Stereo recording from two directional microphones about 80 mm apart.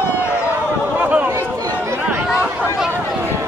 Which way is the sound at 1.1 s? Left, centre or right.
Right.